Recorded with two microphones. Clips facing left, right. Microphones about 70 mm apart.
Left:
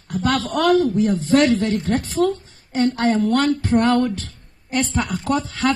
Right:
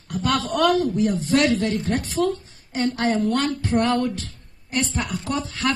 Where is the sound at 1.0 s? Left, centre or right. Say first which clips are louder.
Left 3 dB; left.